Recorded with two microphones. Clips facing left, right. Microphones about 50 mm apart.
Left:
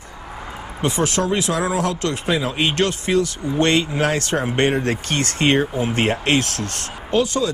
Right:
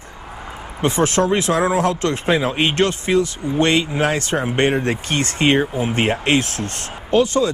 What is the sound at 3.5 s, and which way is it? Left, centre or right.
Speech, centre.